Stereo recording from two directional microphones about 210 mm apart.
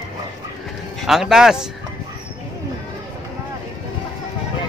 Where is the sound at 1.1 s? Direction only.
Centre (ahead or behind).